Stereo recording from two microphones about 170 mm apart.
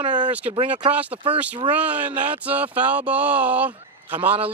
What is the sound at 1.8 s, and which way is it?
Speech, 10° right (ahead or behind).